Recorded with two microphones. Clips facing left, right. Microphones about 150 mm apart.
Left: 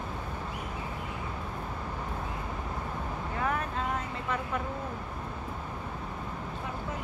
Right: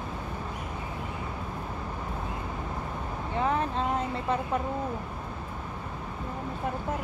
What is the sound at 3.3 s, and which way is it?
Vehicle, 25° right (ahead or behind).